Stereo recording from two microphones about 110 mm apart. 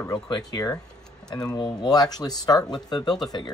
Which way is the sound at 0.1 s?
35° left (ahead or behind).